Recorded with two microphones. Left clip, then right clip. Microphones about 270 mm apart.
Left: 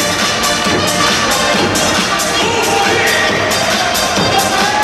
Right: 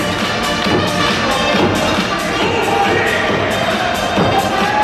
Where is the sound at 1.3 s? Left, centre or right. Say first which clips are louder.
Left 1 dB; centre.